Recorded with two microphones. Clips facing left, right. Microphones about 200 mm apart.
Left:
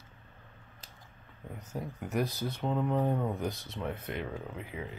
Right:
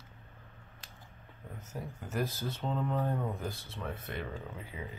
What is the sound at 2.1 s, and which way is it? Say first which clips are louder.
Speech: left 3 dB; 15° left (ahead or behind).